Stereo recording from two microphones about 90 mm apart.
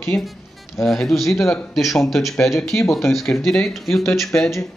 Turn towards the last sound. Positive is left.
turn(degrees=5)  # may be behind; listen again after turning